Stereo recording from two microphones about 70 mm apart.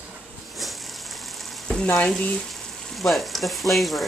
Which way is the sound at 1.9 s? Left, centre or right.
Centre.